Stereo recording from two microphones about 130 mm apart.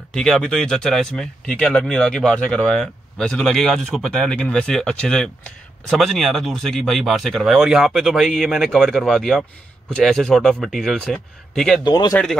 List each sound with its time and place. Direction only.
0.1 s speech: 5° left (ahead or behind)
11.8 s speech: 35° left (ahead or behind)